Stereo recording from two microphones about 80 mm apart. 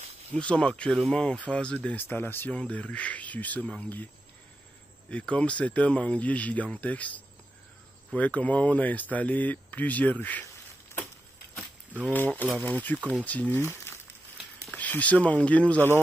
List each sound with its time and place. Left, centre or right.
0.3 s speech: centre
2.0 s speech: left
5.1 s speech: centre
12.1 s speech: left
14.8 s speech: centre